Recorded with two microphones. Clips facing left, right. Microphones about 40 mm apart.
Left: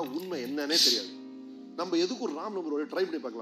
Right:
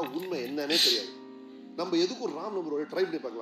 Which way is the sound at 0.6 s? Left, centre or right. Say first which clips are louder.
Right 1 dB; right.